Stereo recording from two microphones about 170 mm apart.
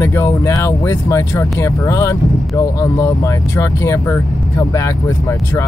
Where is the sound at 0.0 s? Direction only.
15° left (ahead or behind).